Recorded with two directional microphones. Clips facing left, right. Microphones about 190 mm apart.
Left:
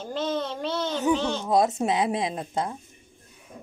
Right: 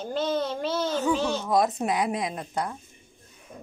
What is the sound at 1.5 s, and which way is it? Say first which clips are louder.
A woman's voice: left 3 dB; 25° left (ahead or behind).